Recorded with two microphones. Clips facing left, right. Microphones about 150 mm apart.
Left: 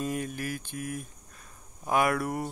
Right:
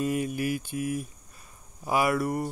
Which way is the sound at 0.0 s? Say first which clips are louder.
Right 5 dB; 5° right (ahead or behind).